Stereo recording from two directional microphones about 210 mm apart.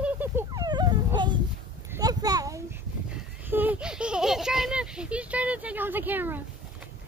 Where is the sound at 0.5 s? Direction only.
20° right (ahead or behind).